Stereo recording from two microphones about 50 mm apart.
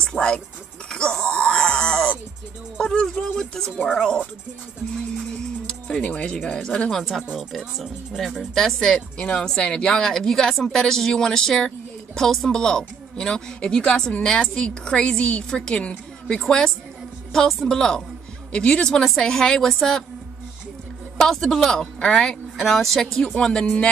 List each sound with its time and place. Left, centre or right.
0.0 s music: centre
0.8 s wail: centre
2.8 s a sound: centre
5.7 s a sound: centre
6.4 s speech: centre
6.9 s speech: centre
8.9 s a woman's voice: centre
17.6 s a woman's voice: centre
21.2 s speech: centre
23.3 s speech: centre